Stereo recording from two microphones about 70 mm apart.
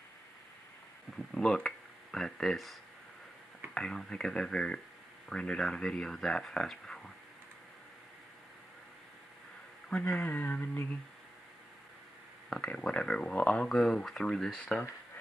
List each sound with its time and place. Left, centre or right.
1.1 s speech: centre
9.8 s speech: centre
12.4 s speech: centre
14.6 s speech: centre